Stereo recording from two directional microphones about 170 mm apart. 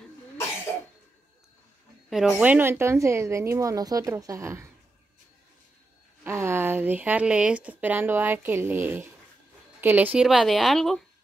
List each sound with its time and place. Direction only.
2.0 s a woman's voice: centre (ahead or behind)
6.2 s a woman's voice: 15° right (ahead or behind); by 11.1 s centre (ahead or behind)